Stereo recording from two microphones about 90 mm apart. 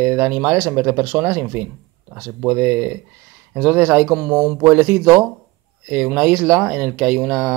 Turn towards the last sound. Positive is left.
turn(degrees=-10)  # may be behind; listen again after turning